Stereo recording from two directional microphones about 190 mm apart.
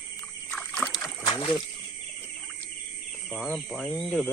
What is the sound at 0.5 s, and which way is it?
Rowboat, 5° left (ahead or behind).